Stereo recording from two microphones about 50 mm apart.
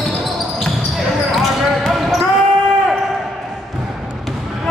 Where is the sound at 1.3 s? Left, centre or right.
Centre.